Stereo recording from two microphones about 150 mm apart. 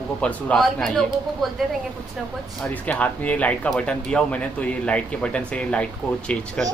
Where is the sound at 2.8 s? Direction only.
10° left (ahead or behind).